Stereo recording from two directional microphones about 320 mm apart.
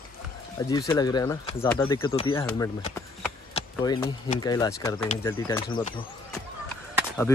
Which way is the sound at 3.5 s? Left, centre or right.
Centre.